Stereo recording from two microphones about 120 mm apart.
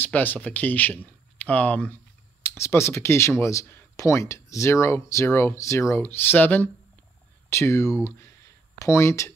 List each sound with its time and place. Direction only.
0.0 s speech: 15° left (ahead or behind)